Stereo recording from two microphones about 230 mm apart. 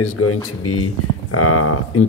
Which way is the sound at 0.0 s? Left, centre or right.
Left.